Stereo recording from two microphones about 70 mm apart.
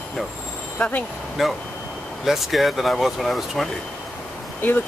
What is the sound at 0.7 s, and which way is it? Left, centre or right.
Speech, left.